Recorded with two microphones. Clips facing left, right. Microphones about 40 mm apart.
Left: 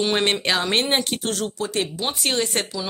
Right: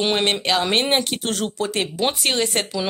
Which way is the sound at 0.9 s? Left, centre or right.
Centre.